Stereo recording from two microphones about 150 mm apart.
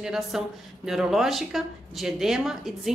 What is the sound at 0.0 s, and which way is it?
Speech, 5° right (ahead or behind).